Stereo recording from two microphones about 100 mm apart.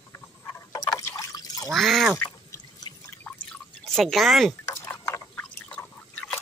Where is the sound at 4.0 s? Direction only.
Centre (ahead or behind).